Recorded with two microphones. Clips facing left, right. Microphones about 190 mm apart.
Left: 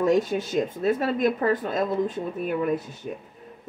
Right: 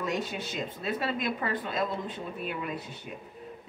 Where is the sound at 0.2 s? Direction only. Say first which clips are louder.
Left 9 dB; 45° left (ahead or behind).